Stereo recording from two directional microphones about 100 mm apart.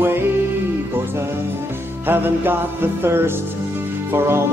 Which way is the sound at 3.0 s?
25° right (ahead or behind).